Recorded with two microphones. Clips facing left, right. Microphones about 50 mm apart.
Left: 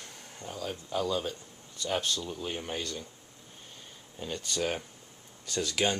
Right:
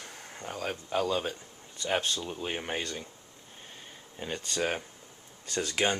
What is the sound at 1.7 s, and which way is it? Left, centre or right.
Speech, right.